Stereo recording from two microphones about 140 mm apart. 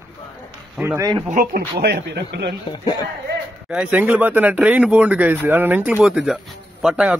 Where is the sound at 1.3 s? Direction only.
75° right (ahead or behind).